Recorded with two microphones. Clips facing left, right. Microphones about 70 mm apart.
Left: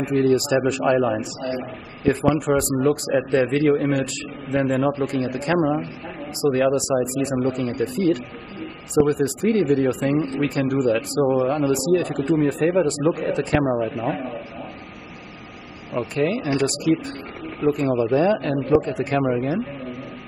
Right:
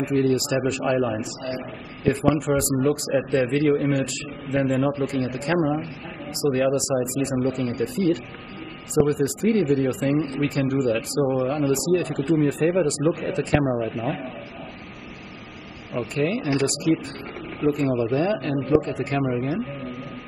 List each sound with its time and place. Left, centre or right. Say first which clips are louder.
0.0 s a man's voice: left 2 dB; centre
0.9 s a man's voice: left 3 dB; centre
1.2 s a man's voice: left 3 dB; centre
11.2 s a man's voice: left 4 dB; centre
11.7 s a man's voice: left 2 dB; centre
15.9 s a man's voice: left 2 dB; centre
19.4 s a sound: left 2 dB; centre